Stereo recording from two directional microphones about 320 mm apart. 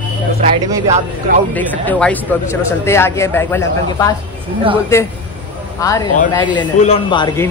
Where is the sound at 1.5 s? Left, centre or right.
Centre.